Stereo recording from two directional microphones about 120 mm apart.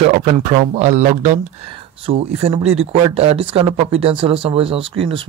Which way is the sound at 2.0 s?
55° right (ahead or behind).